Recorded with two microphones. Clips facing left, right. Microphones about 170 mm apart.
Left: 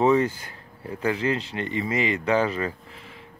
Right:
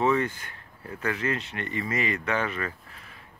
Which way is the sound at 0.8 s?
30° left (ahead or behind).